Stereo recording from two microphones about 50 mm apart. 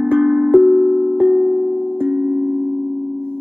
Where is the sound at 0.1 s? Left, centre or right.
Right.